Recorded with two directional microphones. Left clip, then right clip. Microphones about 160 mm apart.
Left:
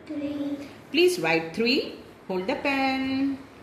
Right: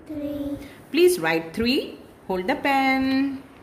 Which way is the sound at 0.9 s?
45° right (ahead or behind).